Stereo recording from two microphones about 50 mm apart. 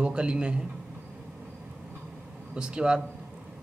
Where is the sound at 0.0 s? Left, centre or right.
Centre.